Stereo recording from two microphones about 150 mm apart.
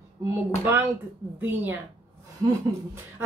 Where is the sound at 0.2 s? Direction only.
15° right (ahead or behind).